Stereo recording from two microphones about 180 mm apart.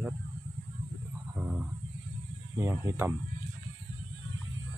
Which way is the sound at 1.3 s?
10° right (ahead or behind).